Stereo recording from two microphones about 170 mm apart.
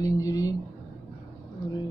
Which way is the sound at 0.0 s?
20° left (ahead or behind).